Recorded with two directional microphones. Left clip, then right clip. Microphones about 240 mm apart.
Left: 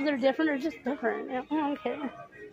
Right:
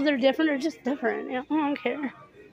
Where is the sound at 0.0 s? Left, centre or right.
Centre.